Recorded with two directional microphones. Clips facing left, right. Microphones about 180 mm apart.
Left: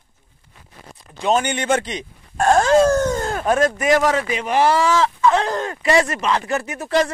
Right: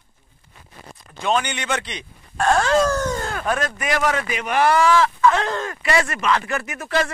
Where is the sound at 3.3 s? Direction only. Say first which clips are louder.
Left 6 dB; 25° left (ahead or behind).